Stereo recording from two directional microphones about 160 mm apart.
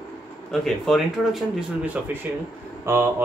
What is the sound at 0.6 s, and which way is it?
Speech, centre (ahead or behind).